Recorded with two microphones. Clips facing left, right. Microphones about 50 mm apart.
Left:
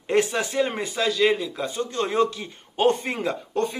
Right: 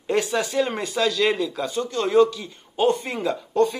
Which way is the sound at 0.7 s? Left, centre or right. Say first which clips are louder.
Right 2 dB; centre.